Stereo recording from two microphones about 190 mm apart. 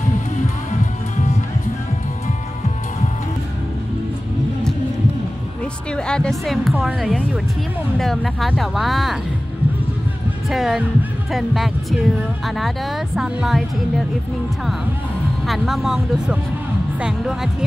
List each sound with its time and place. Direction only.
0.7 s music: 40° left (ahead or behind)
5.9 s speech: 5° left (ahead or behind)
10.5 s speech: centre (ahead or behind)
15.4 s speech: centre (ahead or behind)